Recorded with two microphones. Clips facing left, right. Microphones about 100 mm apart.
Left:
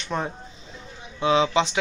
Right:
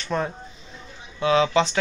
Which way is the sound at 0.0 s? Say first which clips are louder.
Right 2 dB; 20° left (ahead or behind).